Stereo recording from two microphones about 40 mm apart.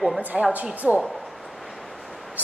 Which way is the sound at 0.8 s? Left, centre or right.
Right.